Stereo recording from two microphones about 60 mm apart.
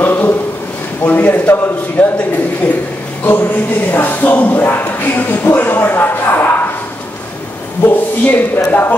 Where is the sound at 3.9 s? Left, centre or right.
Left.